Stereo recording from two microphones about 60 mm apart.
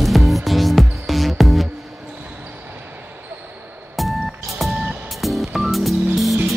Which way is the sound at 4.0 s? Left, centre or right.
Centre.